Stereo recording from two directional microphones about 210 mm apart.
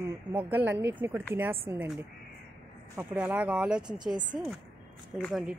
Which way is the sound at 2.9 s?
10° right (ahead or behind).